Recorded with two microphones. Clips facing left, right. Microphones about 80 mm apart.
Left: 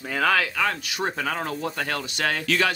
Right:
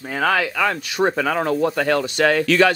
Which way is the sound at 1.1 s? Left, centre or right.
Right.